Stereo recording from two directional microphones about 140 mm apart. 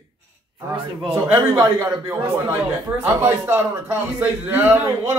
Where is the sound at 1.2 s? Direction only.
20° right (ahead or behind).